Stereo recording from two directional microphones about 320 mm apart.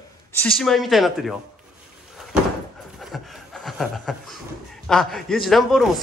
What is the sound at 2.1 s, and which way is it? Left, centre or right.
Door, centre.